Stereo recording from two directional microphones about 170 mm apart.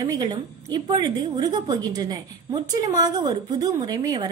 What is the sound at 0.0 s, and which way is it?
A woman's voice, 20° right (ahead or behind).